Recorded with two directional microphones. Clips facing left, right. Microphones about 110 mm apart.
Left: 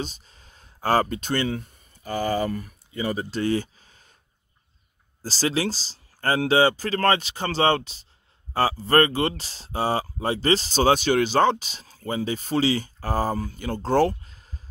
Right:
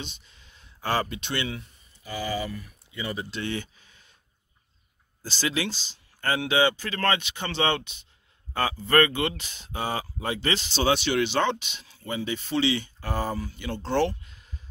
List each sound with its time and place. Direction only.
0.0 s speech: 40° left (ahead or behind)
5.2 s speech: 35° left (ahead or behind)